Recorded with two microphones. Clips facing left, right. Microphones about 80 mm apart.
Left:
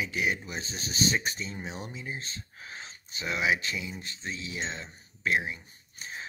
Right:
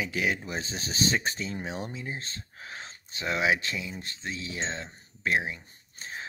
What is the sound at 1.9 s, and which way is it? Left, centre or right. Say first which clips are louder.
Speech: right 2 dB; right.